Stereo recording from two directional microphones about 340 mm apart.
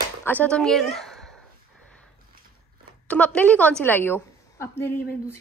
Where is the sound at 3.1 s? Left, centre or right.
Centre.